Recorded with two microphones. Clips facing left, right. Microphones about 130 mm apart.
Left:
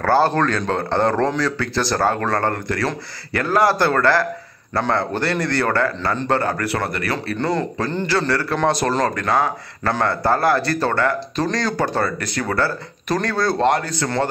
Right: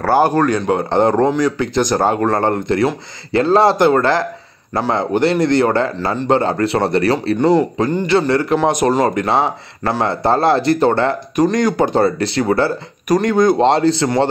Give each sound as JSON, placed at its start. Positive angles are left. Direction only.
{"t": 0.0, "sound": "speech", "side_deg": -15}
{"t": 7.3, "sound": "speech", "side_deg": -15}